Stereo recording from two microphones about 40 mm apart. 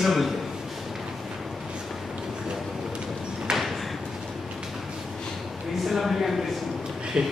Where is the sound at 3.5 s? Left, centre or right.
Centre.